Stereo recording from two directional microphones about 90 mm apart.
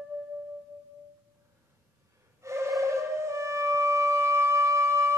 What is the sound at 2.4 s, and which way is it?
Music, 35° right (ahead or behind).